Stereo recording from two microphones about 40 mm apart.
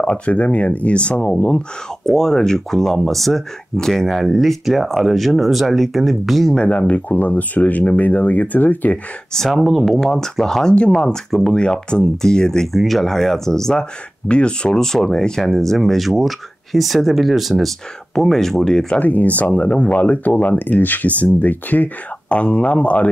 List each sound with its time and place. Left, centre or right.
0.0 s speech: left
2.0 s speech: centre
4.2 s speech: centre
6.5 s speech: left
9.5 s speech: centre
9.8 s speech: centre
11.6 s speech: left
12.7 s speech: centre
14.2 s speech: left
18.9 s speech: left